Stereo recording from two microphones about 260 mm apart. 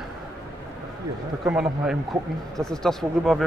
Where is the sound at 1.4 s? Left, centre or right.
Centre.